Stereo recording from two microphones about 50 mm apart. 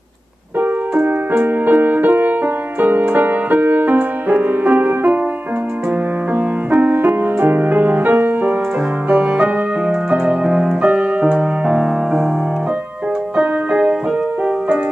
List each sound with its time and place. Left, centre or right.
0.6 s music: right
6.3 s music: right
9.1 s piano: right
10.8 s music: right
13.4 s keyboard: right